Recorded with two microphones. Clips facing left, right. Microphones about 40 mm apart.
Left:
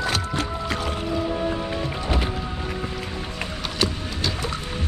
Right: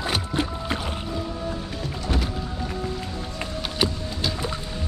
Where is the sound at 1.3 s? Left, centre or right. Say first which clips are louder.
Left 6 dB; left.